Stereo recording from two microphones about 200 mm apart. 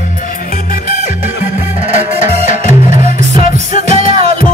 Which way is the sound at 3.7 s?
45° left (ahead or behind).